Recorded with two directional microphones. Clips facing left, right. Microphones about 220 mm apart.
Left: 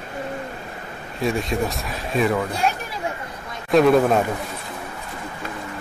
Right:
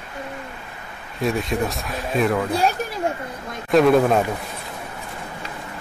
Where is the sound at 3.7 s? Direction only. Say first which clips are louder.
Even; centre (ahead or behind).